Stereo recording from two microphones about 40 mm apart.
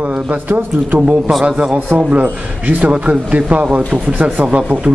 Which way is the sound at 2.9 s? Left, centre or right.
Right.